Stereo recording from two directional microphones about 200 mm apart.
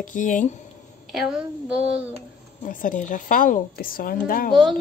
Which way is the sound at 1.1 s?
5° right (ahead or behind).